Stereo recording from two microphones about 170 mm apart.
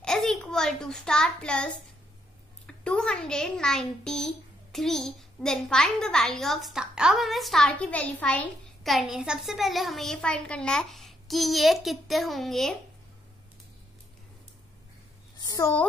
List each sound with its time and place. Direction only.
0.0 s a child's voice: centre (ahead or behind)
15.3 s a woman's voice: 20° left (ahead or behind)